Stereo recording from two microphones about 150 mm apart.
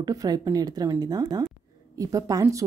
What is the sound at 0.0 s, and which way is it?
Speech, 25° right (ahead or behind).